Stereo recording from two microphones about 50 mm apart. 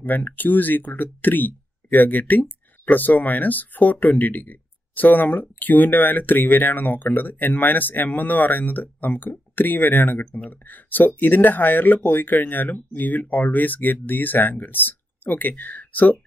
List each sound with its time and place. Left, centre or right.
0.0 s speech: left